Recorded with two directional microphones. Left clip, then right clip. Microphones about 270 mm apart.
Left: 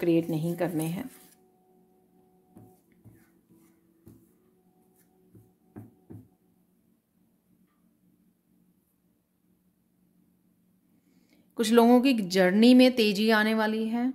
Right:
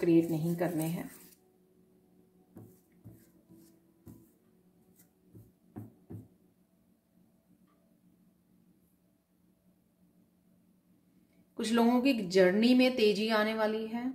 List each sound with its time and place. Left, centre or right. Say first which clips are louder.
0.0 s speech: left 1 dB; left
11.5 s speech: left 8 dB; left